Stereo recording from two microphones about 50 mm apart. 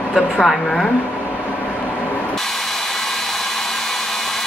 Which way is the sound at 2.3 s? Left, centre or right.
Centre.